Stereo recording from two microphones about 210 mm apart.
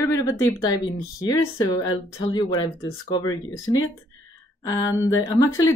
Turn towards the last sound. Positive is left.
turn(degrees=15)  # may be behind; listen again after turning